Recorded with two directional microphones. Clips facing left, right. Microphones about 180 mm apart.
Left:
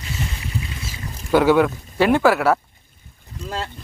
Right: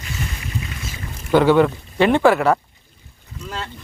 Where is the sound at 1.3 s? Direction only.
10° left (ahead or behind).